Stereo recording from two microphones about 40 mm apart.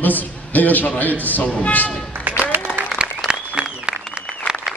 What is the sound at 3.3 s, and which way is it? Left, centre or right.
Applause, right.